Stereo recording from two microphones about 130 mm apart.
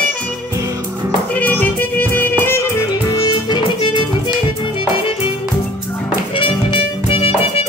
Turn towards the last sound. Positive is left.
turn(degrees=45)  # may be behind; listen again after turning